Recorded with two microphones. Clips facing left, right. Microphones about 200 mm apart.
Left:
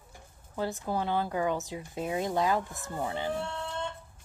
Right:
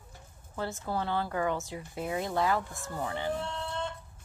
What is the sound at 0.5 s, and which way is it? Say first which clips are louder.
Speech: left 2 dB; 15° left (ahead or behind).